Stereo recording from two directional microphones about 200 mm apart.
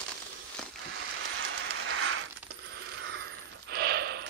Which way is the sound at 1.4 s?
90° right.